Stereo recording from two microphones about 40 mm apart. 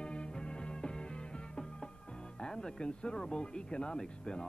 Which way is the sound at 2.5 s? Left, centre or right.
Centre.